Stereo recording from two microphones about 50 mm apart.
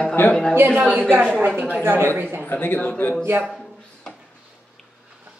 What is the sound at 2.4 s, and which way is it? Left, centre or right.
Speech, left.